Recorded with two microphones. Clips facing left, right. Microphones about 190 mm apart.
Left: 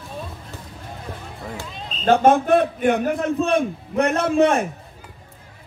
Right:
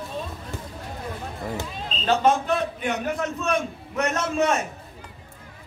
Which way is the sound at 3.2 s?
30° left (ahead or behind).